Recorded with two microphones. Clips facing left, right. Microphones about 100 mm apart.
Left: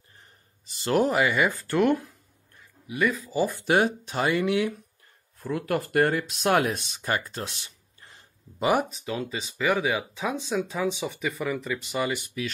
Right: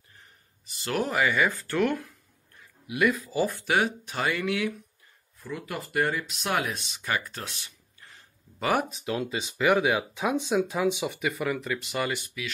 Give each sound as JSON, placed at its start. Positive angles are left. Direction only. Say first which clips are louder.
{"t": 0.7, "sound": "speech", "louder": "left 6 dB", "side_deg": 30}
{"t": 3.0, "sound": "speech", "louder": "right 1 dB", "side_deg": -5}
{"t": 3.6, "sound": "speech", "louder": "left 3 dB", "side_deg": 35}
{"t": 5.4, "sound": "speech", "louder": "left 8 dB", "side_deg": 50}
{"t": 8.5, "sound": "speech", "louder": "left 3 dB", "side_deg": 10}
{"t": 8.9, "sound": "speech", "louder": "right 1 dB", "side_deg": -5}